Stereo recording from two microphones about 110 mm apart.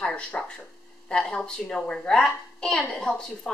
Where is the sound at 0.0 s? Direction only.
10° left (ahead or behind).